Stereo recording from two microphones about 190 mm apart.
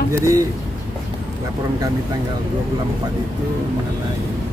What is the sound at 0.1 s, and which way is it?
Speech, 15° right (ahead or behind).